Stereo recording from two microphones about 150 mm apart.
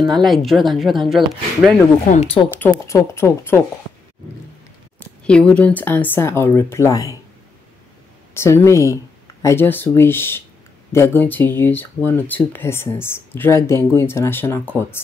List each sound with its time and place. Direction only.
0.0 s speech: centre (ahead or behind)
2.1 s speech: 40° left (ahead or behind)
2.9 s speech: 20° left (ahead or behind)
5.2 s speech: 5° left (ahead or behind); by 7.2 s 25° left (ahead or behind)
8.4 s speech: 20° left (ahead or behind)